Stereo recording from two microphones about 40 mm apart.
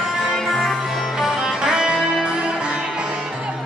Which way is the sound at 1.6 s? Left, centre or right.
Centre.